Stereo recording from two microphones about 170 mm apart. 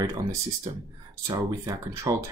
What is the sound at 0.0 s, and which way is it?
Speech, 20° right (ahead or behind).